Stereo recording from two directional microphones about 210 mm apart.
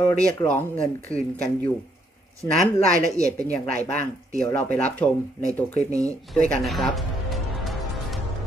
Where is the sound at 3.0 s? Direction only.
15° right (ahead or behind).